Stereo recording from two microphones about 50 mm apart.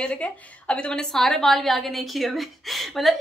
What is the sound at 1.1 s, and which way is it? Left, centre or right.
A woman's voice, centre.